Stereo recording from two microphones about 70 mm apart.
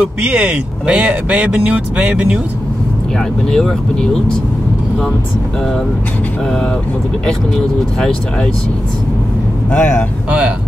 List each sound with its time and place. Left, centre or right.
0.0 s speech: centre
3.4 s speech: centre
7.2 s speech: centre
9.7 s speech: centre